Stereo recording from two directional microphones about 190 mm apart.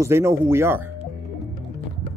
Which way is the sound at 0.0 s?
15° right (ahead or behind).